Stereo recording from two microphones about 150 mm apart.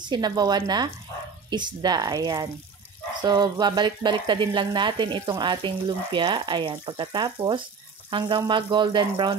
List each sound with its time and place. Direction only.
0.0 s speech: 30° right (ahead or behind)